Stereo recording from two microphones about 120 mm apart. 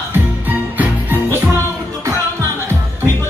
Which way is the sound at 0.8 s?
15° right (ahead or behind).